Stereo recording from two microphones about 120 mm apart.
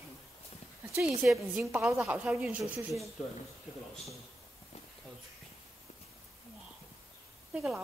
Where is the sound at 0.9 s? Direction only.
5° right (ahead or behind).